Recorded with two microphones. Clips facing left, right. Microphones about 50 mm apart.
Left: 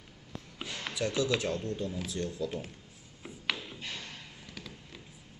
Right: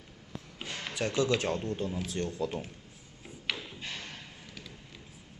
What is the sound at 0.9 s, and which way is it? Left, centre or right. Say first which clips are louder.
Speech: right 2 dB; right.